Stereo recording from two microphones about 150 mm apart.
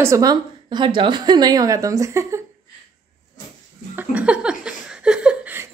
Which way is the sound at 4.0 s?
10° right (ahead or behind).